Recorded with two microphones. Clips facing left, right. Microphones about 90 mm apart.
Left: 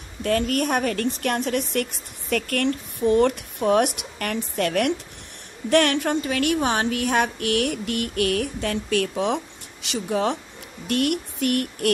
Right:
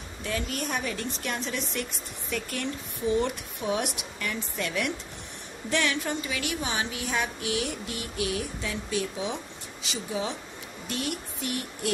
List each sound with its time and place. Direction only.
0.2 s a woman's voice: 55° left (ahead or behind)